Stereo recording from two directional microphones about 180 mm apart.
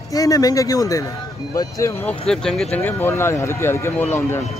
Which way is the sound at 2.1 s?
5° left (ahead or behind).